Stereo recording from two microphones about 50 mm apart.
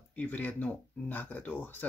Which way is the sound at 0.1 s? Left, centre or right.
Left.